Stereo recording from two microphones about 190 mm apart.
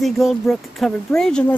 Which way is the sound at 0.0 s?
Centre (ahead or behind).